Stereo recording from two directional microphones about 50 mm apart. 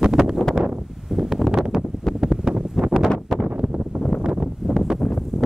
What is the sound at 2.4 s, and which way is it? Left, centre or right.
Wind noise, right.